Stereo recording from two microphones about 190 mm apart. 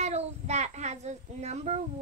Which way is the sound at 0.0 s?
35° right (ahead or behind).